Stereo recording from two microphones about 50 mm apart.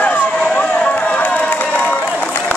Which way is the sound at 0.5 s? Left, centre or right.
Left.